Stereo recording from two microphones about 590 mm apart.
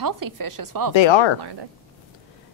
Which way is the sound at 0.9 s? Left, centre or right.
Left.